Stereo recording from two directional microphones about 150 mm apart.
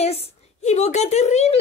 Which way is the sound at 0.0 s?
45° left (ahead or behind).